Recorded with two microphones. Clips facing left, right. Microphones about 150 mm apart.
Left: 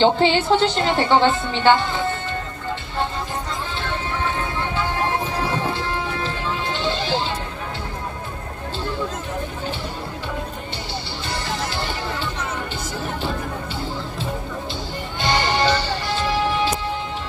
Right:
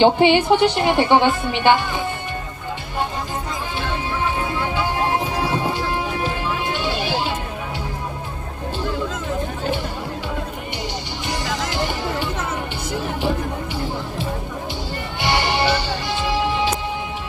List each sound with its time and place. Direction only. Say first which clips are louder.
0.0 s a woman's voice: right 3 dB; 15° right (ahead or behind)
3.8 s music: right 2 dB; 15° right (ahead or behind)
11.2 s music: right 2 dB; 15° right (ahead or behind)
15.1 s music: even; 15° right (ahead or behind)